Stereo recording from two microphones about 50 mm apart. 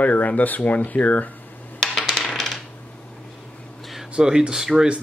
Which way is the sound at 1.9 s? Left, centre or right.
Centre.